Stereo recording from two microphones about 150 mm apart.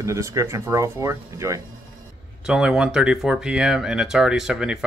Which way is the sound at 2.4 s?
5° right (ahead or behind).